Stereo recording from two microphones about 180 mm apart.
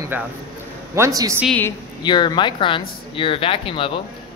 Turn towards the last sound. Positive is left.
turn(degrees=30)  # may be behind; listen again after turning